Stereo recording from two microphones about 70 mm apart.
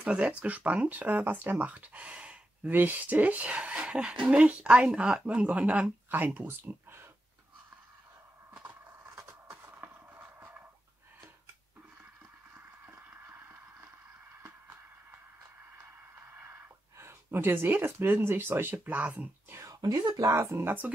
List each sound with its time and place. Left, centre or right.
0.0 s speech: centre
9.1 s a sound: right
12.8 s a sound: right
16.3 s speech: right
19.7 s speech: right
20.3 s speech: right